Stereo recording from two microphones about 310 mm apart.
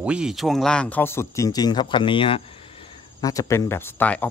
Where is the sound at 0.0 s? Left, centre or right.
Centre.